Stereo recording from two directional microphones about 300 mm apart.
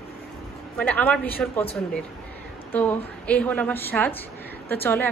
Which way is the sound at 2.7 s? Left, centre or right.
Centre.